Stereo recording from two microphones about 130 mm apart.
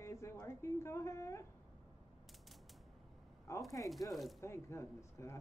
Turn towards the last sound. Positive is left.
turn(degrees=20)  # may be behind; listen again after turning